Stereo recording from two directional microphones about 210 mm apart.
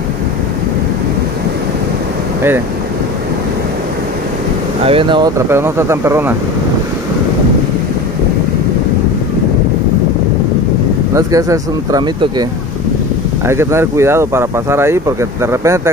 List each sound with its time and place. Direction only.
4.8 s speech: 25° right (ahead or behind)
11.1 s speech: 15° right (ahead or behind)
13.5 s speech: 10° right (ahead or behind)